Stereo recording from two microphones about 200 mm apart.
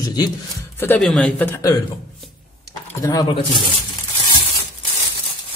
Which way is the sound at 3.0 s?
20° left (ahead or behind).